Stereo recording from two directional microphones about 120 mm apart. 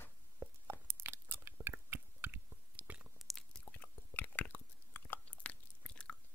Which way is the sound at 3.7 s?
15° left (ahead or behind).